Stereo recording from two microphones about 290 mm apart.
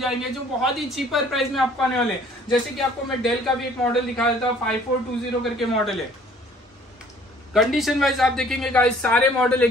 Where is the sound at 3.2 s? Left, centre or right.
Centre.